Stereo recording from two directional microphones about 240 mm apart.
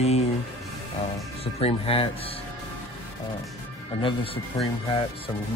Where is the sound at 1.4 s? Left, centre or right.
Left.